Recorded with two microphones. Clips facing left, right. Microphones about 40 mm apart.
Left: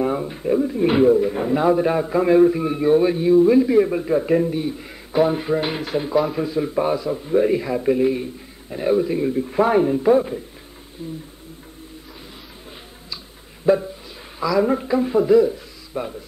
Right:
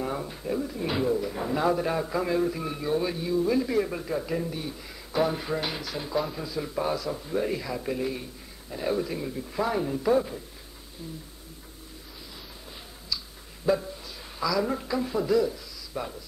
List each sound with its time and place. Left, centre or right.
0.0 s a man's voice: left
9.6 s speech: left
9.9 s a man's voice: left
13.7 s a man's voice: left